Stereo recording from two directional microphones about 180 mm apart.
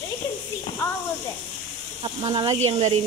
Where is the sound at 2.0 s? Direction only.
25° right (ahead or behind).